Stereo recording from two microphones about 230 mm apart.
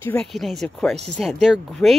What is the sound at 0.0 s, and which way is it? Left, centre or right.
Speech, centre.